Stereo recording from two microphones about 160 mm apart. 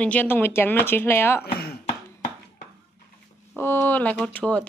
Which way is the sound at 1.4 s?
75° left (ahead or behind).